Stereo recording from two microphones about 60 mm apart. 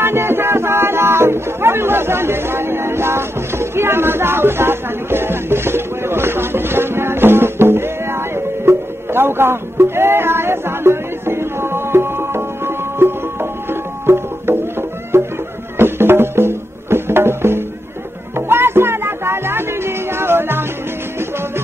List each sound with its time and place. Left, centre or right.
0.0 s music: right